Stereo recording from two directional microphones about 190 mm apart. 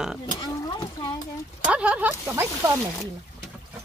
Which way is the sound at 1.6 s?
5° right (ahead or behind).